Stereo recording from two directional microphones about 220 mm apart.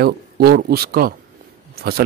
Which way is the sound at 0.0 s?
45° right (ahead or behind).